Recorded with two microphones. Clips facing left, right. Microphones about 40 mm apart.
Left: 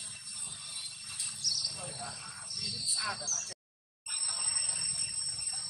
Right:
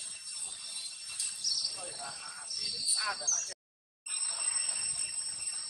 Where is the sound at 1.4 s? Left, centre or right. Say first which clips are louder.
Left 1 dB; centre.